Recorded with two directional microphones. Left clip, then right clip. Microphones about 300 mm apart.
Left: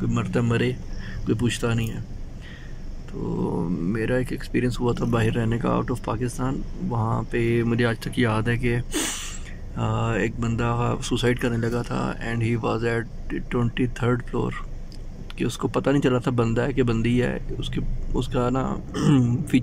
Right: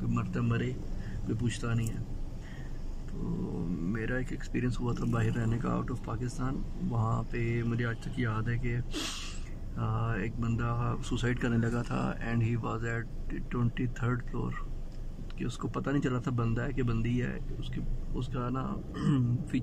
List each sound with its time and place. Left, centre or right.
0.1 s speech: centre
3.9 s speech: centre